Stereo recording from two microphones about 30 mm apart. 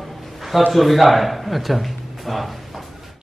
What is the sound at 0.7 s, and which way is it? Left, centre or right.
A man's voice, centre.